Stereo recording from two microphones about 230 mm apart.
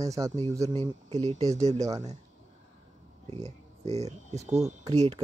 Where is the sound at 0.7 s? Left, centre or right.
Right.